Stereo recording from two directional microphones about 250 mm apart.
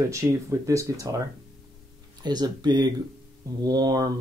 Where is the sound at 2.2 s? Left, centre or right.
Centre.